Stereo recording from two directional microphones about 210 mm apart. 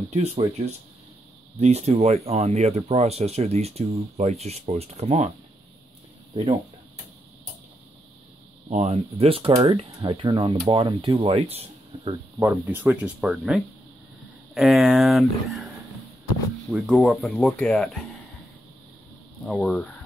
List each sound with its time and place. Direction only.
0.1 s speech: 30° right (ahead or behind)
6.3 s speech: 25° right (ahead or behind)
8.6 s speech: 30° right (ahead or behind)
12.4 s speech: 10° right (ahead or behind)
16.7 s speech: 5° right (ahead or behind)
19.4 s speech: centre (ahead or behind)